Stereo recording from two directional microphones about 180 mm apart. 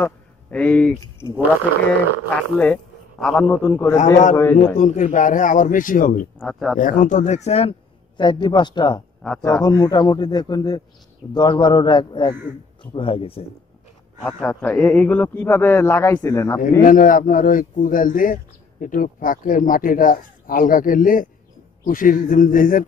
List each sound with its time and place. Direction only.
0.0 s speech: 10° left (ahead or behind)
2.3 s a man's voice: 5° left (ahead or behind)
4.7 s a man's voice: 45° left (ahead or behind)
6.3 s speech: centre (ahead or behind)
6.8 s speech: 45° left (ahead or behind)
8.2 s a man's voice: 25° left (ahead or behind)
14.2 s a man's voice: 10° left (ahead or behind)
16.8 s a man's voice: 50° left (ahead or behind)